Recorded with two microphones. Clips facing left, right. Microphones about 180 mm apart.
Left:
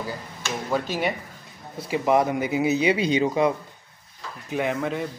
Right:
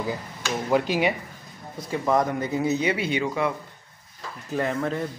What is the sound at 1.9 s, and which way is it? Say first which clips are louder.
Speech: left 2 dB; 10° left (ahead or behind).